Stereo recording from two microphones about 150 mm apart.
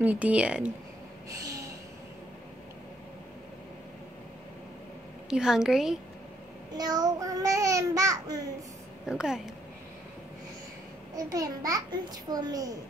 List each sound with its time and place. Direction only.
0.0 s a woman's voice: 10° right (ahead or behind)
1.3 s a sound: 20° right (ahead or behind)
5.3 s a woman's voice: 5° right (ahead or behind)
6.8 s a child's voice: 25° right (ahead or behind)
9.0 s a woman's voice: 5° right (ahead or behind)
11.1 s a child's voice: 25° right (ahead or behind)